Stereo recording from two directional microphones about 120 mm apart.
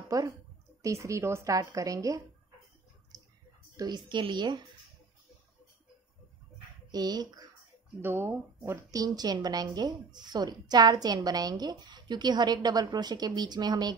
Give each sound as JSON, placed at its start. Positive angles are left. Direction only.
{"t": 0.1, "sound": "a woman's voice", "side_deg": -30}
{"t": 3.1, "sound": "a sound", "side_deg": -30}
{"t": 3.7, "sound": "a woman's voice", "side_deg": -35}
{"t": 6.9, "sound": "speech", "side_deg": -35}
{"t": 8.0, "sound": "speech", "side_deg": -15}
{"t": 8.9, "sound": "a woman's voice", "side_deg": -30}